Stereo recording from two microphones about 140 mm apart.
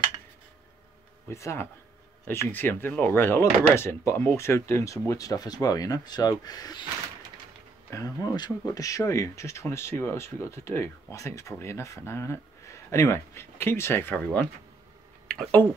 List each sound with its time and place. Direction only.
1.3 s speech: 20° left (ahead or behind)
7.9 s speech: 25° left (ahead or behind); by 15.7 s 5° left (ahead or behind)